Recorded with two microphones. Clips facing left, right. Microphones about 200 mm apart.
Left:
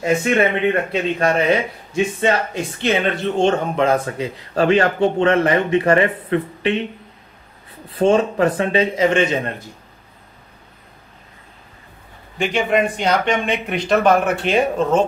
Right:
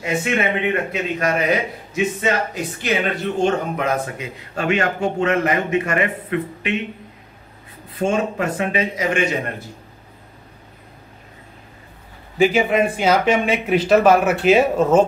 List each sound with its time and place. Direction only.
0.0 s speech: 45° left (ahead or behind)
0.9 s speech: 30° left (ahead or behind)
7.9 s a man's voice: 30° left (ahead or behind)
12.4 s speech: 5° right (ahead or behind)